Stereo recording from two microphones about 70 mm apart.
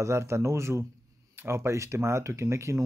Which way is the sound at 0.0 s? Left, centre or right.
Right.